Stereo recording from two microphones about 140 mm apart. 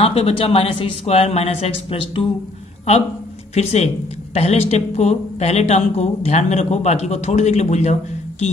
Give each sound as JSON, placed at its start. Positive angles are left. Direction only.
{"t": 0.0, "sound": "speech", "side_deg": 45}
{"t": 3.5, "sound": "speech", "side_deg": 50}